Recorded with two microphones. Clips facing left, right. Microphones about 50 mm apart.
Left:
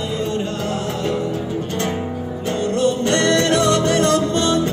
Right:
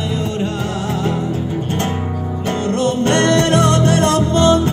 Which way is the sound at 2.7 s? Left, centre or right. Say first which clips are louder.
Right 2 dB; right.